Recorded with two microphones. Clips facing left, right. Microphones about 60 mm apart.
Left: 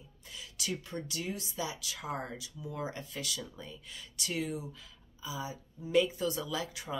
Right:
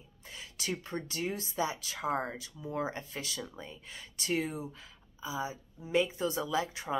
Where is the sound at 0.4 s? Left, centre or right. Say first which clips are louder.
Right 1 dB; right.